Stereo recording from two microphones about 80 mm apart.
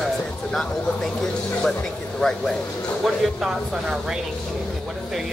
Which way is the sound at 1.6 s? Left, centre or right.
Centre.